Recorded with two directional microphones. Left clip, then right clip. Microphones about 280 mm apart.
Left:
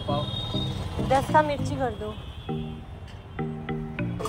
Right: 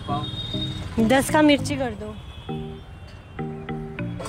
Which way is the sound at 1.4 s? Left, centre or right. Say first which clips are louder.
Right 5 dB; right.